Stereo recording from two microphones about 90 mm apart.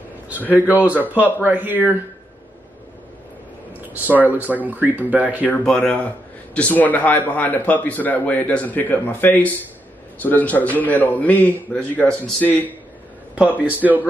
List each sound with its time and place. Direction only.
0.7 s speech: 15° right (ahead or behind)
3.9 s speech: 20° right (ahead or behind)
5.5 s a man's voice: 15° left (ahead or behind)
13.8 s speech: 5° right (ahead or behind)